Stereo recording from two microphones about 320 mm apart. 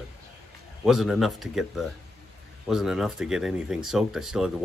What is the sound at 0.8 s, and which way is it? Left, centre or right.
Speech, centre.